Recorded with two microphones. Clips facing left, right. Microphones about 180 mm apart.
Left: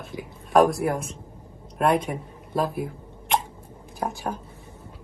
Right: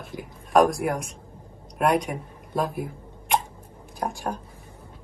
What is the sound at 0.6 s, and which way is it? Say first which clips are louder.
Speech: left 1 dB; 15° right (ahead or behind).